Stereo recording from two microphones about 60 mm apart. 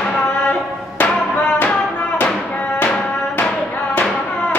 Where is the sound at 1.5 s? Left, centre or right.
Left.